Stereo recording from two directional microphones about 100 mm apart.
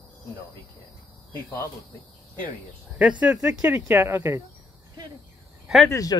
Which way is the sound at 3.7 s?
25° right (ahead or behind).